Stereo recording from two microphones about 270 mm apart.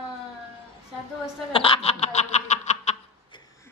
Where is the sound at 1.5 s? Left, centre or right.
Centre.